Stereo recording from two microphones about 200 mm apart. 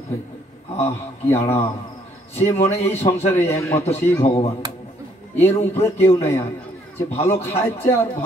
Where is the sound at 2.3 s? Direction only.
30° left (ahead or behind).